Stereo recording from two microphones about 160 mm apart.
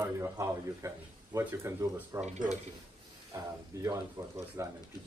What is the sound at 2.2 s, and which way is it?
Speech, 45° right (ahead or behind).